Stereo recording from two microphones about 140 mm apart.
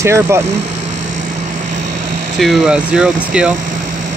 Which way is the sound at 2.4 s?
5° right (ahead or behind).